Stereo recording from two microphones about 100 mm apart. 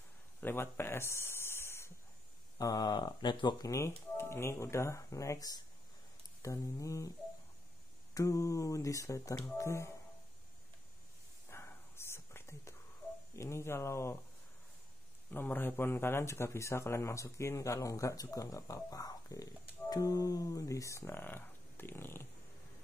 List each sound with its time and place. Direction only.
0.4 s a sound: 20° left (ahead or behind)
2.6 s speech: 40° left (ahead or behind)
3.6 s speech: 30° left (ahead or behind)
8.1 s speech: 35° left (ahead or behind)
11.4 s whispering: 25° left (ahead or behind)
13.4 s speech: 30° left (ahead or behind)
15.3 s speech: 20° left (ahead or behind)